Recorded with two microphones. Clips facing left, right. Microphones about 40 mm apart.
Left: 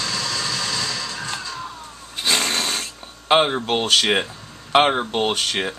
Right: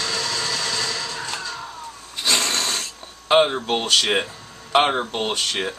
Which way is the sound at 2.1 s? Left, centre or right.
Centre.